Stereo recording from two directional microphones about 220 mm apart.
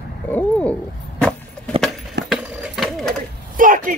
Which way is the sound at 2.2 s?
Centre (ahead or behind).